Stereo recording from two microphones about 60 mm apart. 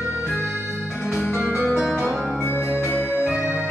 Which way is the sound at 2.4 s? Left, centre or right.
Left.